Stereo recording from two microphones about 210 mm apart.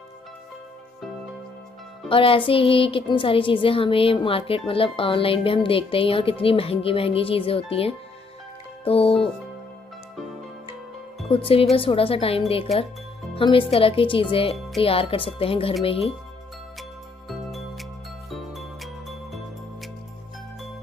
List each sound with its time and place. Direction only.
2.0 s a woman's voice: 25° left (ahead or behind)
11.2 s a woman's voice: 25° left (ahead or behind)
17.3 s music: centre (ahead or behind)